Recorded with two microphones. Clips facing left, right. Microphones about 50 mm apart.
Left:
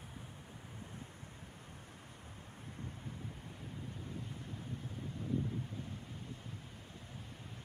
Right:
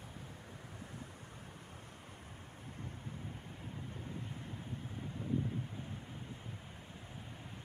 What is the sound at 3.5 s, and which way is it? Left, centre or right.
Waves, right.